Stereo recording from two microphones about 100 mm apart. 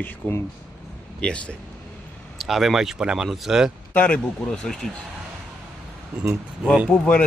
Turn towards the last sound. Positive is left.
turn(degrees=10)  # may be behind; listen again after turning